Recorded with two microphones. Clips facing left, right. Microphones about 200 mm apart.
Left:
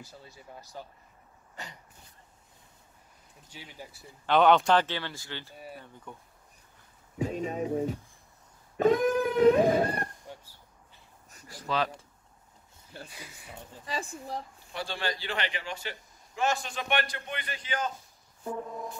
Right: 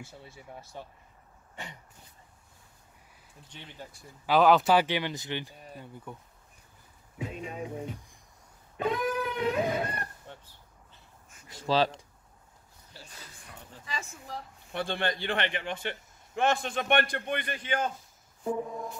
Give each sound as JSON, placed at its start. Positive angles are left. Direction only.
{"t": 0.0, "sound": "speech", "side_deg": -25}
{"t": 3.4, "sound": "speech", "side_deg": 10}
{"t": 4.3, "sound": "speech", "side_deg": 0}
{"t": 6.1, "sound": "speech", "side_deg": -5}
{"t": 7.2, "sound": "speech", "side_deg": 35}
{"t": 8.7, "sound": "guitar", "side_deg": 45}
{"t": 10.2, "sound": "a sound", "side_deg": 10}
{"t": 11.4, "sound": "speech", "side_deg": -25}
{"t": 13.1, "sound": "speech", "side_deg": 10}
{"t": 13.8, "sound": "speech", "side_deg": 35}
{"t": 14.7, "sound": "a man's voice", "side_deg": -55}
{"t": 18.4, "sound": "music", "side_deg": -10}